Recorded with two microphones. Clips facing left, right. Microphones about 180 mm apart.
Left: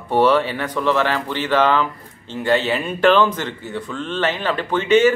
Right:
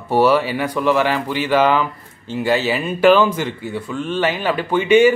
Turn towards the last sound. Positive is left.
turn(degrees=-10)  # may be behind; listen again after turning